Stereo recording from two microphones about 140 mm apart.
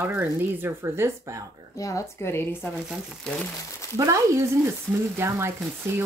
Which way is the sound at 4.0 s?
20° right (ahead or behind).